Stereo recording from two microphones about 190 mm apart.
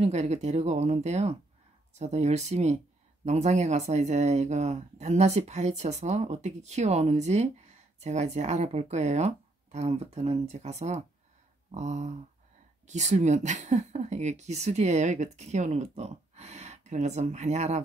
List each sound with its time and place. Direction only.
0.0 s speech: 35° right (ahead or behind)